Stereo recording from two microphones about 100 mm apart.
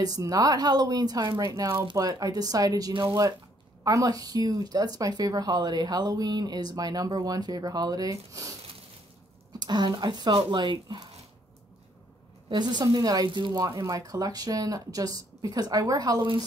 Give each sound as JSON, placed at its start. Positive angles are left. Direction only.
{"t": 0.0, "sound": "speech", "side_deg": -40}
{"t": 9.6, "sound": "speech", "side_deg": -45}
{"t": 12.4, "sound": "speech", "side_deg": -50}